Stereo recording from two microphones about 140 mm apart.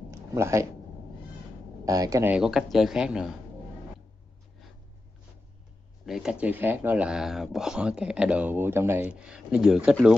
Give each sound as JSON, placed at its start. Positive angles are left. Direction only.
{"t": 0.1, "sound": "a sound", "side_deg": -20}
{"t": 1.9, "sound": "speech", "side_deg": -25}
{"t": 2.3, "sound": "speech", "side_deg": -5}
{"t": 6.0, "sound": "speech", "side_deg": -5}